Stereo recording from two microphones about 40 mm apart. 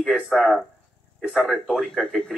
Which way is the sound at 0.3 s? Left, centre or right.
Centre.